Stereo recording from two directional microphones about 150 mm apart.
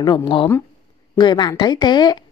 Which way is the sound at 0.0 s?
30° left (ahead or behind).